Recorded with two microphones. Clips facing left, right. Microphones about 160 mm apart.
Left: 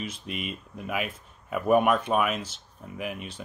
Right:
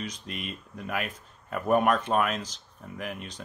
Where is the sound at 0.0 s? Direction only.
5° left (ahead or behind).